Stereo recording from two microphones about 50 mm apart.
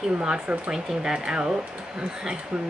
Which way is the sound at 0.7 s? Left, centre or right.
Centre.